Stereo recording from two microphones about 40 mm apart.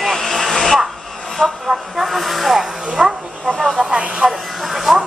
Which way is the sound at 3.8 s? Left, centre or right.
Centre.